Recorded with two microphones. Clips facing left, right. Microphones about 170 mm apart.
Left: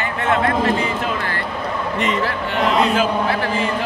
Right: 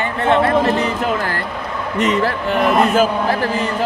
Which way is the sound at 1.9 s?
45° right (ahead or behind).